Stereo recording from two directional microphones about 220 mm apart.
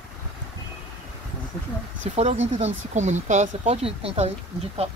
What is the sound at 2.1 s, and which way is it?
Speech, 30° right (ahead or behind).